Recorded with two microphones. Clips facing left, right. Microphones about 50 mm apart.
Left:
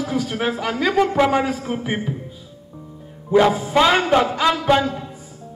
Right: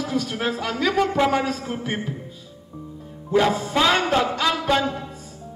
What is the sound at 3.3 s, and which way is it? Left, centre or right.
A man's voice, centre.